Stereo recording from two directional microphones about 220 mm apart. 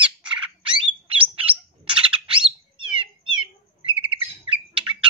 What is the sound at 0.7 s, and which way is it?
Bird, 25° right (ahead or behind).